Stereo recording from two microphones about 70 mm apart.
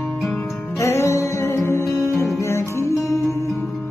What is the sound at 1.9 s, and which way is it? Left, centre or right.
Music, centre.